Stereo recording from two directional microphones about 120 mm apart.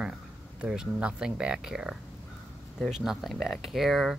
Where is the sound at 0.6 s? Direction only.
10° right (ahead or behind).